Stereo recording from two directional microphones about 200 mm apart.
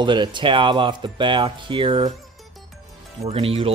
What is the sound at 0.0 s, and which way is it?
Speech, 25° right (ahead or behind).